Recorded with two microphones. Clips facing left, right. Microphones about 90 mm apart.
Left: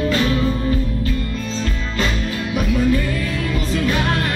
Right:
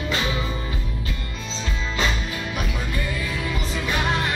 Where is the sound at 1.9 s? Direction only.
5° right (ahead or behind).